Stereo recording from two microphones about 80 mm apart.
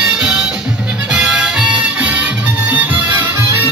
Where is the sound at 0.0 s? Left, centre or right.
Centre.